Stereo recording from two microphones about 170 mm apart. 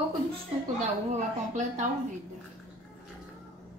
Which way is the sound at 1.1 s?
45° right (ahead or behind).